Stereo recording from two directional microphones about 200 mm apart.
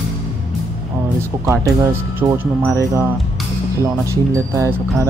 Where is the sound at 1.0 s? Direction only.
15° right (ahead or behind).